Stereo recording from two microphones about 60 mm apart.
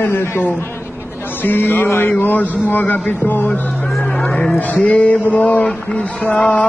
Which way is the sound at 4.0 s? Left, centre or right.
Left.